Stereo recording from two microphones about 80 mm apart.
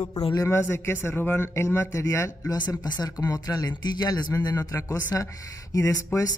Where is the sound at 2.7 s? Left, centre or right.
Left.